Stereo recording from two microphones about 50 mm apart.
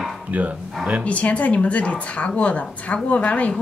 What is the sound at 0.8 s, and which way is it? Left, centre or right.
Speech, centre.